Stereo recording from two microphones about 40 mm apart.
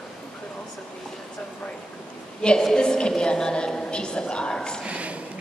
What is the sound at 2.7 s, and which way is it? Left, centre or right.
A woman's voice, centre.